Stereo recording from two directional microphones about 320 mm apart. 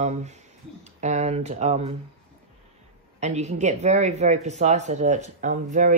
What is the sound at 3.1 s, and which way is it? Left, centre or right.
Speech, right.